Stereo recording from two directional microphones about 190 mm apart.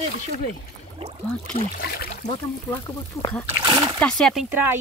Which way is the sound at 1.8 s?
55° left (ahead or behind).